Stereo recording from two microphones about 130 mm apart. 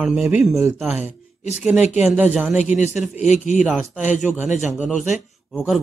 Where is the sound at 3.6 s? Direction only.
5° right (ahead or behind).